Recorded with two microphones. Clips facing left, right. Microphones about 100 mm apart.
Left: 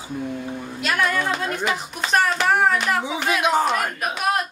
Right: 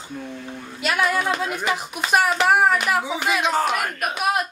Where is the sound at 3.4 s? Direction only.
15° left (ahead or behind).